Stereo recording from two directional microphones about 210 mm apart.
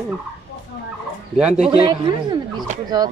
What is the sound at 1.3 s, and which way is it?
Speech, 5° right (ahead or behind).